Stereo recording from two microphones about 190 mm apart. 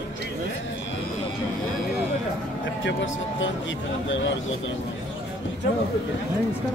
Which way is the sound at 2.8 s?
80° left.